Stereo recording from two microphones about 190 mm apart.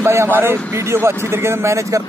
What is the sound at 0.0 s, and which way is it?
A man's voice, 15° right (ahead or behind).